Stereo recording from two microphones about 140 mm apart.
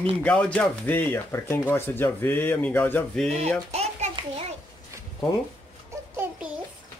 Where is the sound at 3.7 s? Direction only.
50° right (ahead or behind).